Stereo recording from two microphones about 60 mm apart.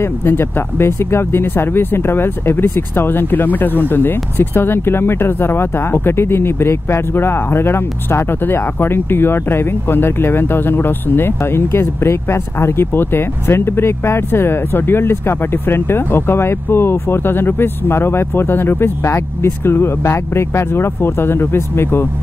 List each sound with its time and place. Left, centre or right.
0.0 s speech: left